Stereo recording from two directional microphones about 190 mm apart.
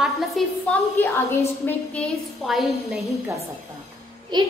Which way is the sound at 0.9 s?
10° left (ahead or behind).